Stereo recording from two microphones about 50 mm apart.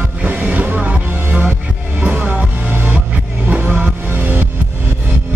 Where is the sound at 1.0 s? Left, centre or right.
Right.